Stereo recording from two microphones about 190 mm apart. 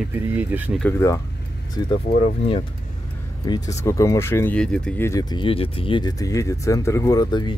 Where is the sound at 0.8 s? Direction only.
15° left (ahead or behind).